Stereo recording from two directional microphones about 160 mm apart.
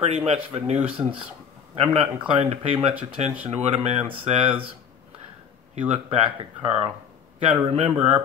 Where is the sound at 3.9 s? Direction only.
10° right (ahead or behind).